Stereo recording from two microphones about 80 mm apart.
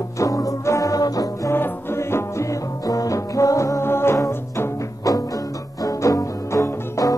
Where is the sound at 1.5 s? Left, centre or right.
Left.